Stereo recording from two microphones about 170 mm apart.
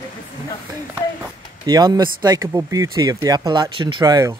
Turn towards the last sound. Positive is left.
turn(degrees=-20)  # may be behind; listen again after turning